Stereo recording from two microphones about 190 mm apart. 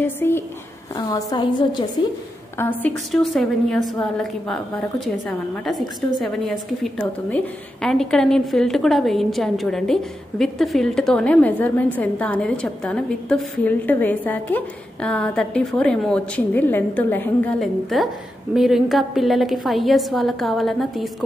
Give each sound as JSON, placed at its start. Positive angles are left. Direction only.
{"t": 0.0, "sound": "a woman's voice", "side_deg": 10}
{"t": 0.9, "sound": "a woman's voice", "side_deg": 20}
{"t": 2.5, "sound": "a woman's voice", "side_deg": 10}